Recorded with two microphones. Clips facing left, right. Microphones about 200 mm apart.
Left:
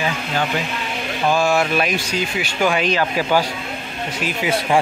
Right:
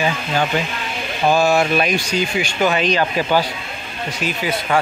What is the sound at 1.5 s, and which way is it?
A man's voice, 5° left (ahead or behind).